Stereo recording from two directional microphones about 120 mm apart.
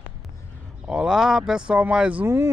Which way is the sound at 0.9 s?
5° right (ahead or behind).